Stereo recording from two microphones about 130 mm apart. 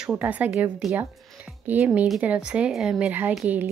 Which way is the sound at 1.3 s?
10° right (ahead or behind).